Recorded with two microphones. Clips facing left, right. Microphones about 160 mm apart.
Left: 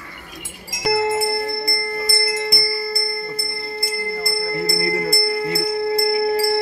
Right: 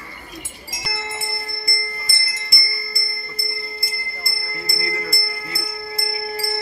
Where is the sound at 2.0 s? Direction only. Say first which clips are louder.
Left 14 dB; 80° left.